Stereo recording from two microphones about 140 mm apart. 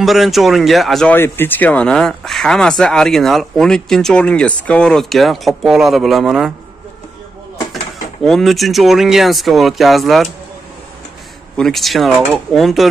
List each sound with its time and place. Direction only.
0.0 s speech: centre (ahead or behind)
1.1 s speech: 15° left (ahead or behind); by 6.5 s 5° right (ahead or behind)
8.2 s speech: centre (ahead or behind)
11.5 s speech: 5° left (ahead or behind)